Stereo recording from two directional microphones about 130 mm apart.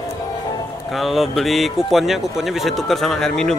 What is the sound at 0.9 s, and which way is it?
Speech, centre (ahead or behind).